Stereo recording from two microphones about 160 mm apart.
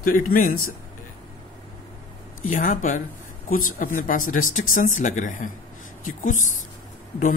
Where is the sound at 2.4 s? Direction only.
55° left (ahead or behind).